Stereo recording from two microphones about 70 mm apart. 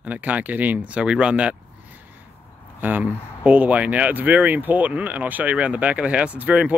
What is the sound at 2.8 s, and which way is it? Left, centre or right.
Speech, right.